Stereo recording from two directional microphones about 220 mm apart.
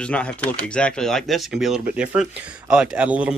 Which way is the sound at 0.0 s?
5° left (ahead or behind).